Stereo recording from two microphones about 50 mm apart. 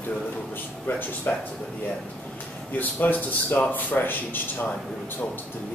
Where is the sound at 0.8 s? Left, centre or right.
Left.